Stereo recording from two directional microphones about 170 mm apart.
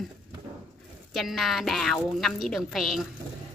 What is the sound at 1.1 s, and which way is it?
A woman's voice, centre (ahead or behind).